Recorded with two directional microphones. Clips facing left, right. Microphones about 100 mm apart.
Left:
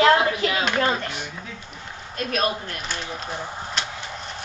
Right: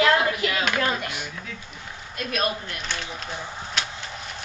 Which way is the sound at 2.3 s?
40° left (ahead or behind).